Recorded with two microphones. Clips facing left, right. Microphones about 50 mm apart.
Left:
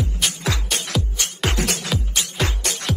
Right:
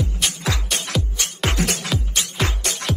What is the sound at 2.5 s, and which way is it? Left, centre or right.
Music, right.